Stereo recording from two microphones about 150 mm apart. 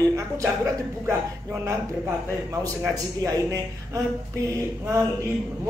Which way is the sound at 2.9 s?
20° right (ahead or behind).